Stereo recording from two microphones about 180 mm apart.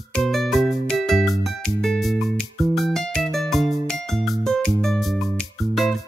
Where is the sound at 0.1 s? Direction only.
Centre (ahead or behind).